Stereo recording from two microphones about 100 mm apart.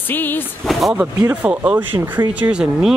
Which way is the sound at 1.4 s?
20° right (ahead or behind).